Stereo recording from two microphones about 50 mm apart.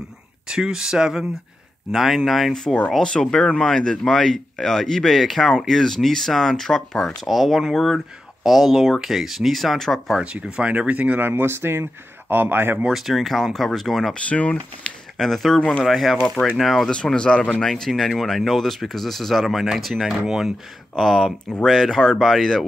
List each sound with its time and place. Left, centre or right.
0.5 s speech: centre
1.9 s speech: centre
3.0 s speech: centre
7.2 s speech: centre
10.1 s speech: centre
11.2 s speech: right
12.9 s speech: centre
14.1 s speech: left
15.1 s speech: centre
16.8 s speech: centre
20.9 s speech: centre